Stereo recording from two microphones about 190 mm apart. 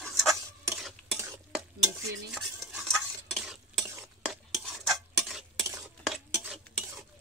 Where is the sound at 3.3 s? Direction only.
Centre (ahead or behind).